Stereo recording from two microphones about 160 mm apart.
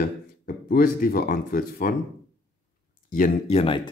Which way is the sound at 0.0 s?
65° left (ahead or behind).